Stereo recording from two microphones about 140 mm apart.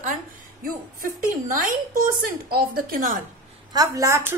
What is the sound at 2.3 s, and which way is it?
Speech, 90° right.